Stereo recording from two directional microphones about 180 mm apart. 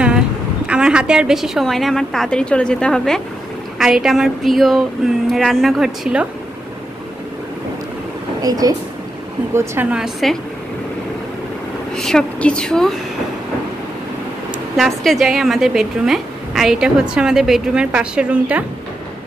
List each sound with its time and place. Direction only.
0.7 s a woman's voice: 5° right (ahead or behind)
8.4 s a woman's voice: 20° right (ahead or behind)
9.5 s a woman's voice: 10° right (ahead or behind)
11.9 s a woman's voice: 5° left (ahead or behind)
14.8 s a woman's voice: centre (ahead or behind)